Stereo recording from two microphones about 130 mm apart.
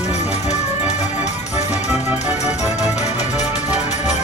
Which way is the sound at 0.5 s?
60° left (ahead or behind).